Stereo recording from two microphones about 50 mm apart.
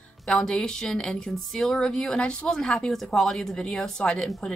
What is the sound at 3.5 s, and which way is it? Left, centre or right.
Speech, centre.